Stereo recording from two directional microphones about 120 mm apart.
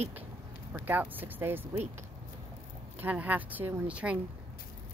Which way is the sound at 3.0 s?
15° right (ahead or behind).